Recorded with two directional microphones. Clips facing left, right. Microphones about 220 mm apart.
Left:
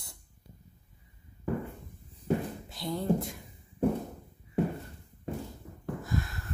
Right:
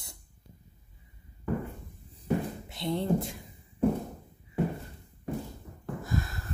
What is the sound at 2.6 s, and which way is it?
Speech, 25° right (ahead or behind).